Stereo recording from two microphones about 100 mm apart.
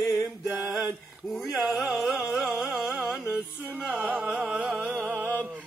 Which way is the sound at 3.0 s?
5° right (ahead or behind).